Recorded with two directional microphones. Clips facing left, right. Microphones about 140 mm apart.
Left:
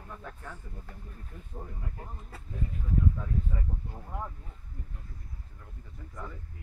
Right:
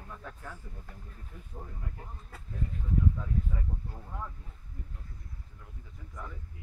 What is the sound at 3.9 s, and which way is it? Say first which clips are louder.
Speech: left 3 dB; 20° left (ahead or behind).